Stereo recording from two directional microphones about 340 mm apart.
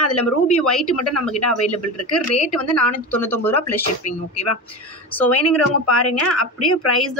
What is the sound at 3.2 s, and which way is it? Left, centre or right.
Speech, centre.